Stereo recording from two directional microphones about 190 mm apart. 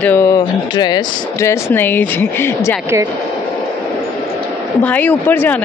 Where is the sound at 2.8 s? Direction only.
15° right (ahead or behind).